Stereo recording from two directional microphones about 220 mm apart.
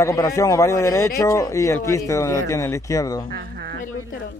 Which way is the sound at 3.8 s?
40° left (ahead or behind).